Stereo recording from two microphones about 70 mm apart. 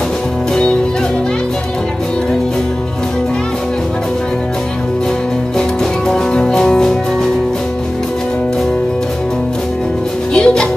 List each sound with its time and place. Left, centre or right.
6.0 s music: centre
10.3 s music: centre